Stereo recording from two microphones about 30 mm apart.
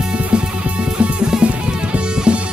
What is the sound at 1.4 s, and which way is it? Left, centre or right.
Music, right.